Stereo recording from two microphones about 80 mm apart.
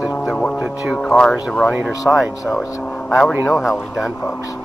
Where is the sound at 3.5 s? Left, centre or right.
Centre.